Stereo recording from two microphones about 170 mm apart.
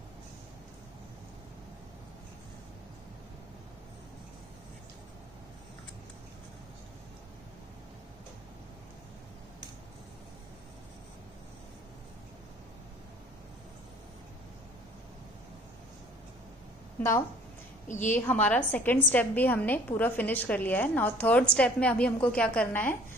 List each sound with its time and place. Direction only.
17.8 s a woman's voice: 45° left (ahead or behind)
18.1 s a woman's voice: 10° left (ahead or behind)